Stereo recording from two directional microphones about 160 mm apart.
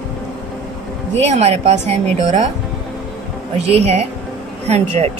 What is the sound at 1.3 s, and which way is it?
A woman's voice, 40° right (ahead or behind).